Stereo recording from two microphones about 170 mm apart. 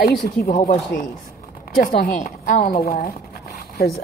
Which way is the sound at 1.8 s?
50° left (ahead or behind).